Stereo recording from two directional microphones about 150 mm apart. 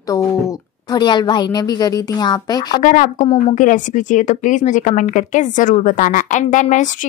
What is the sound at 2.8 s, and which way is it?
A woman's voice, 60° left (ahead or behind).